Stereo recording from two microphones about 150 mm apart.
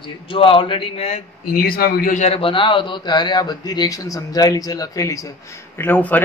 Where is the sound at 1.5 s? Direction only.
85° left.